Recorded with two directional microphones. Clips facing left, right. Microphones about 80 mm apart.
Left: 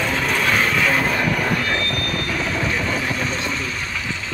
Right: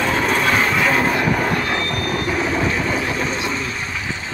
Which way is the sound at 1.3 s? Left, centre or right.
Right.